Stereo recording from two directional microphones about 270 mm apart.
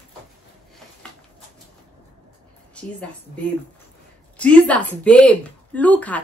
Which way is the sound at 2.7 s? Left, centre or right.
Centre.